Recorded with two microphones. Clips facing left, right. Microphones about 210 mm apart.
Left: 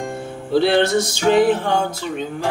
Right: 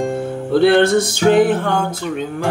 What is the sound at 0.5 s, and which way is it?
Music, 55° right (ahead or behind).